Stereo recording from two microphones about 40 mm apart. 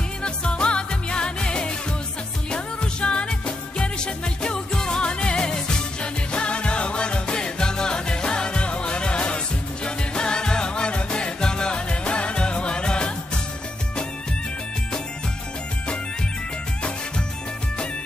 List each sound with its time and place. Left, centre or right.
0.2 s music: left